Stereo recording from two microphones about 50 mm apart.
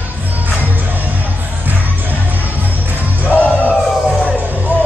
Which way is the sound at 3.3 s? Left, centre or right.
Left.